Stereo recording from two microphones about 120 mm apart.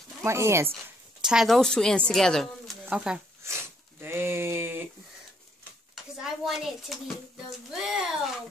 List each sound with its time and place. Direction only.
0.2 s speech: 25° right (ahead or behind)
1.2 s speech: 5° right (ahead or behind)
2.8 s speech: 10° right (ahead or behind)
4.0 s a sound: 20° right (ahead or behind)
5.9 s a woman's voice: centre (ahead or behind)